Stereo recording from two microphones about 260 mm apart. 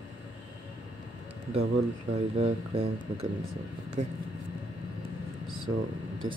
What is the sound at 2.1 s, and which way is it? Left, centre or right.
Speech, right.